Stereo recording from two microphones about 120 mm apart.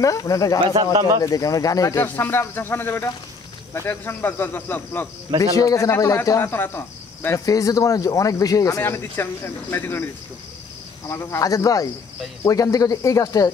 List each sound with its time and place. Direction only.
0.0 s speech: 30° left (ahead or behind)
2.0 s speech: 15° left (ahead or behind)
5.4 s speech: 30° left (ahead or behind)
11.1 s speech: 20° left (ahead or behind)